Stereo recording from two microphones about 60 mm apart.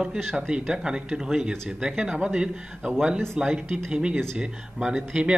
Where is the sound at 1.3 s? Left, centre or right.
Centre.